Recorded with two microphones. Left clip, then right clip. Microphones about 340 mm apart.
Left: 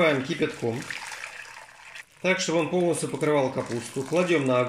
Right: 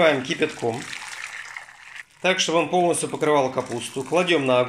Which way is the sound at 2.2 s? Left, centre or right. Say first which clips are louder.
Right 4 dB; right.